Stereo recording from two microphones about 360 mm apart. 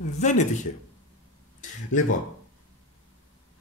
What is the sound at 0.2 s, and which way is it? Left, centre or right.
Speech, centre.